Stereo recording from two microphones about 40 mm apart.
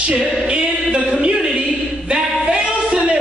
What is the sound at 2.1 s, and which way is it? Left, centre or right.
Singing, right.